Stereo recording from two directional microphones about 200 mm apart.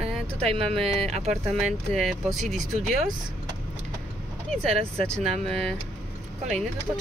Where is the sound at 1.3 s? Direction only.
Centre (ahead or behind).